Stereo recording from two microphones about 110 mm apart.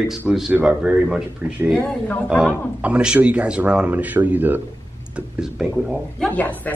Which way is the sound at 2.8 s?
10° right (ahead or behind).